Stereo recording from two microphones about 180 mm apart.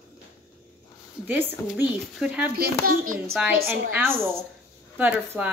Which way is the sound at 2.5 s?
55° right (ahead or behind).